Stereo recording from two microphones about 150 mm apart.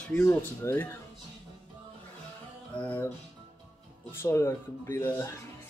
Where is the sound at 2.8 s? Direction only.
15° left (ahead or behind).